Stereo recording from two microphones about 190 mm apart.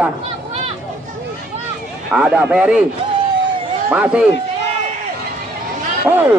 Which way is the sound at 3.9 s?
5° right (ahead or behind).